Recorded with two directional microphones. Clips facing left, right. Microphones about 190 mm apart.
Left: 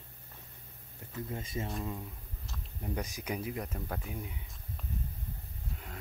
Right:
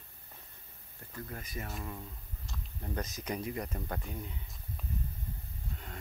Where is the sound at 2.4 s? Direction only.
5° left (ahead or behind).